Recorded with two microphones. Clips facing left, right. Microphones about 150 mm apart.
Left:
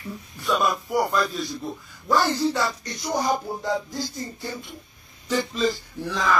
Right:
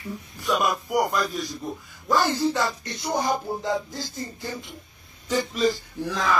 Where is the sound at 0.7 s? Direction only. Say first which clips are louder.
Even; 15° right (ahead or behind).